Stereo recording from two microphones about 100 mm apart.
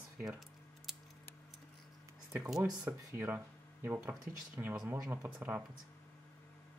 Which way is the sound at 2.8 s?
20° right (ahead or behind).